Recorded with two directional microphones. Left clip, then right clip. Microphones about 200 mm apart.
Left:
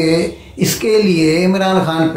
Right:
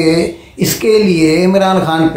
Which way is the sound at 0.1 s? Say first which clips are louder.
Right 2 dB; 5° right (ahead or behind).